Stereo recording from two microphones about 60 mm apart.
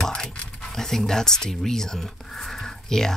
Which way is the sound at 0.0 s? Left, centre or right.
Centre.